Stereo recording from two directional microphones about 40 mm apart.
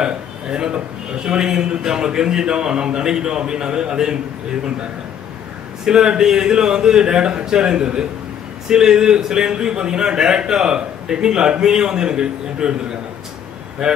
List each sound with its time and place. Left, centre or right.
0.0 s a sound: right
1.2 s a man's voice: centre
5.9 s a man's voice: centre
13.8 s a man's voice: centre